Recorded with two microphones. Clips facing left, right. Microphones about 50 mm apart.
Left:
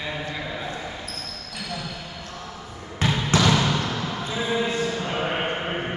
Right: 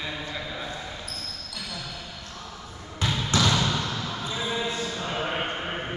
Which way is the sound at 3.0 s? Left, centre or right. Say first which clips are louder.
Left 4 dB; left.